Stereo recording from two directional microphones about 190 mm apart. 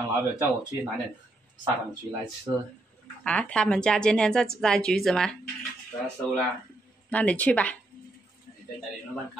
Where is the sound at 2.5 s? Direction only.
15° right (ahead or behind).